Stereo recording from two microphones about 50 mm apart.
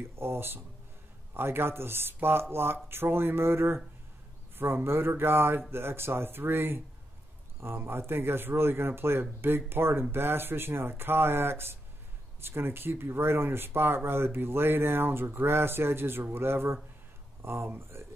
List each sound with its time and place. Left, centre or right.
0.1 s a man's voice: right